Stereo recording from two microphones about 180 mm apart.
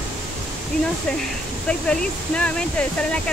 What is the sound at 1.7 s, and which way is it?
Speech, 5° left (ahead or behind).